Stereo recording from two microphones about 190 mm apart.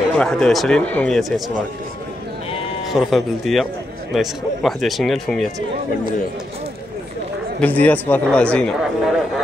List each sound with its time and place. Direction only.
0.2 s speech: 5° left (ahead or behind)
2.9 s speech: centre (ahead or behind)
7.6 s speech: 10° left (ahead or behind)